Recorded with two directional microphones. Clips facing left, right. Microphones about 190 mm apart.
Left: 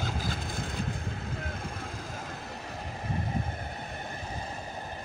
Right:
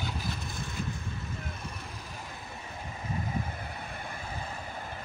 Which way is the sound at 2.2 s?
70° left (ahead or behind).